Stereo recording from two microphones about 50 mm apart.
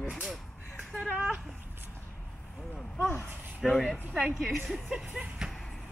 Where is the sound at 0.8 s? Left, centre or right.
Right.